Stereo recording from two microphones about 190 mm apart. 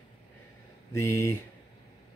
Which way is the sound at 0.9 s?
15° left (ahead or behind).